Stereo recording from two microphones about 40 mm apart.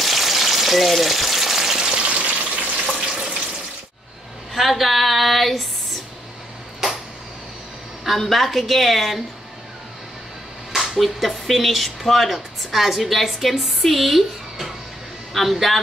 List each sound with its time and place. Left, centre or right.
0.0 s frying: centre
2.0 s frying: right
4.6 s a sound: centre
8.0 s a woman's voice: centre
10.7 s a woman's voice: centre